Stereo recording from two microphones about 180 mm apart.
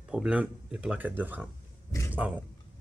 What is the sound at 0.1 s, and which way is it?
Speech, 5° right (ahead or behind).